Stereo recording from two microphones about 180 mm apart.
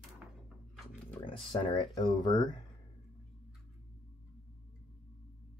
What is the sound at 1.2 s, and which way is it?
Speech, 30° left (ahead or behind).